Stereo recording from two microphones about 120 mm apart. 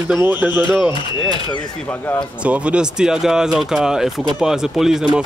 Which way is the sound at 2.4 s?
10° right (ahead or behind).